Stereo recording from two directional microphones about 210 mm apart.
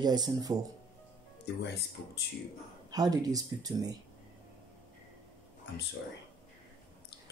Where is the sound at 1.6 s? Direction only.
50° left (ahead or behind).